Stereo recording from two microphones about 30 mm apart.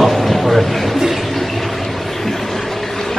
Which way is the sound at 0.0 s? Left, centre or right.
Centre.